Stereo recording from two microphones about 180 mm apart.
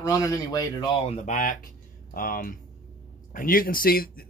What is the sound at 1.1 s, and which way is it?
Speech, 45° left (ahead or behind).